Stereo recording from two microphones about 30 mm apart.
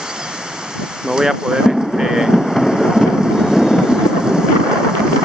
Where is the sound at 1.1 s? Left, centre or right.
Right.